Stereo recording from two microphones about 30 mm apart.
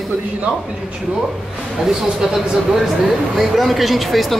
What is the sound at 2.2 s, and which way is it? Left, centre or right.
A man's voice, centre.